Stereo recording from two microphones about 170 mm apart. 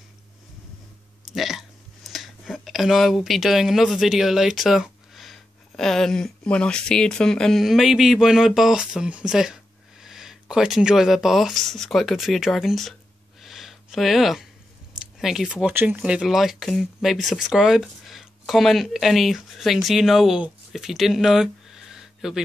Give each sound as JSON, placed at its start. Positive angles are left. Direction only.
{"t": 1.2, "sound": "speech", "side_deg": 0}
{"t": 13.4, "sound": "a sound", "side_deg": 0}
{"t": 15.0, "sound": "speech", "side_deg": 0}